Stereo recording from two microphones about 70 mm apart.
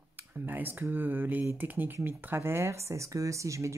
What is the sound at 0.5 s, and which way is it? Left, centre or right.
Speech, right.